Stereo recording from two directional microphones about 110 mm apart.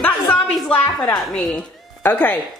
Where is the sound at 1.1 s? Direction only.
5° left (ahead or behind).